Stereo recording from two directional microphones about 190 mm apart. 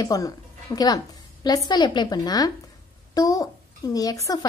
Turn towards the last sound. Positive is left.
turn(degrees=20)  # may be behind; listen again after turning